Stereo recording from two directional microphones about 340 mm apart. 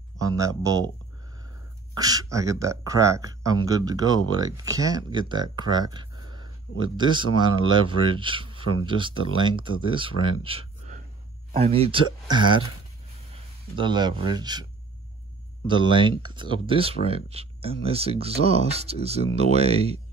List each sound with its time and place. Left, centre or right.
0.2 s speech: centre
2.0 s speech: centre